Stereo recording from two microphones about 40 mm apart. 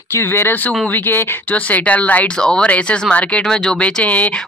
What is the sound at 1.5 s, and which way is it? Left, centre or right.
Speech, left.